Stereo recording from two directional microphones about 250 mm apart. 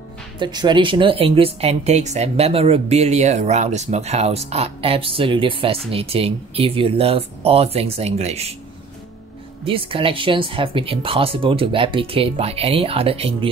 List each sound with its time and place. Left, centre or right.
0.4 s a woman's voice: centre
9.7 s a woman's voice: right